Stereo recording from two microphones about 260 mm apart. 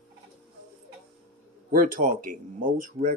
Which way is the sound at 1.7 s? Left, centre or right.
Right.